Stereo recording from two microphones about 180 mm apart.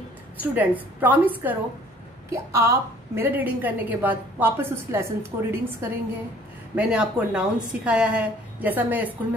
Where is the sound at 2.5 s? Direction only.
15° right (ahead or behind).